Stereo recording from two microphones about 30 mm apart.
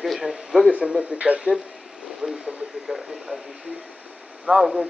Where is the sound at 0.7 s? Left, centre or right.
Right.